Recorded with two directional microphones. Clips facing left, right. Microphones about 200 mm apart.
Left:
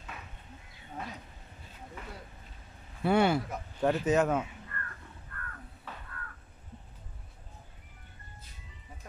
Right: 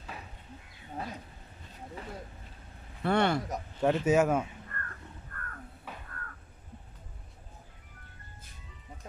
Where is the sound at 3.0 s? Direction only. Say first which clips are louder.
Left 2 dB; 5° left (ahead or behind).